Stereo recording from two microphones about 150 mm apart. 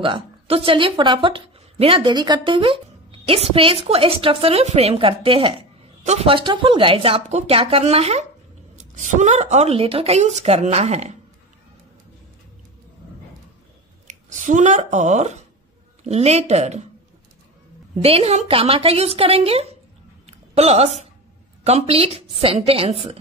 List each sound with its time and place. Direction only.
0.0 s a woman's voice: 35° right (ahead or behind)
8.7 s a woman's voice: 55° right (ahead or behind)
14.0 s a woman's voice: 55° right (ahead or behind)
17.9 s a woman's voice: 40° right (ahead or behind)
20.2 s a sound: 45° right (ahead or behind)
21.6 s a woman's voice: 40° right (ahead or behind)